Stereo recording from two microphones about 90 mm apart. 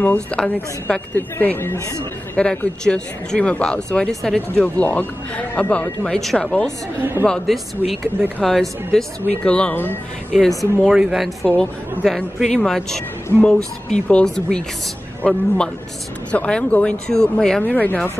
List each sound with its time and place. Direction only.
0.0 s speech: 15° left (ahead or behind)
4.6 s speech: 15° left (ahead or behind)
7.0 s speech: 25° right (ahead or behind)
7.2 s speech: 5° left (ahead or behind)
10.6 s speech: centre (ahead or behind); by 18.1 s 20° left (ahead or behind)